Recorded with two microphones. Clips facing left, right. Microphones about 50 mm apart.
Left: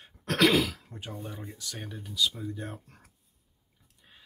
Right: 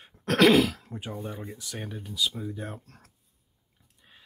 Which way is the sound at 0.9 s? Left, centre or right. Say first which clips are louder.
Right 4 dB; centre.